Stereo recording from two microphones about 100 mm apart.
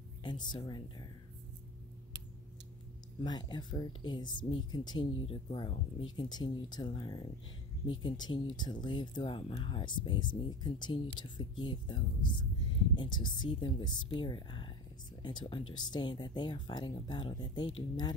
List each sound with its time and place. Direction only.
0.2 s speech: 50° left (ahead or behind)
3.3 s speech: 45° left (ahead or behind)
5.5 s speech: 60° left (ahead or behind)
6.2 s speech: 45° left (ahead or behind)
9.4 s speech: 65° left (ahead or behind)